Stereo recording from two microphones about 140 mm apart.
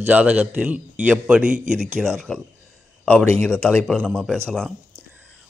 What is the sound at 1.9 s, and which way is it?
A man's voice, 5° left (ahead or behind).